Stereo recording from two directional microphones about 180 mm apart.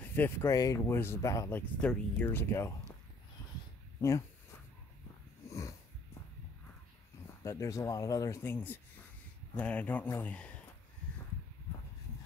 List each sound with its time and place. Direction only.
0.0 s speech: 10° left (ahead or behind)
1.8 s speech: 5° left (ahead or behind)
5.5 s wheeze: 15° left (ahead or behind)
7.4 s speech: 15° left (ahead or behind)